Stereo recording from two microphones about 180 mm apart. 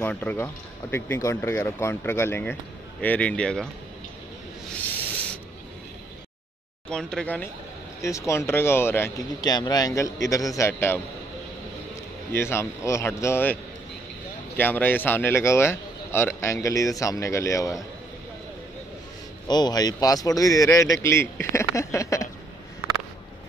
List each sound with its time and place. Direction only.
0.0 s a man's voice: 10° left (ahead or behind)
6.9 s speech: 5° left (ahead or behind)
8.0 s a man's voice: 15° left (ahead or behind)
12.3 s a man's voice: 15° left (ahead or behind)
14.6 s a man's voice: 10° left (ahead or behind)
19.4 s a man's voice: 25° left (ahead or behind)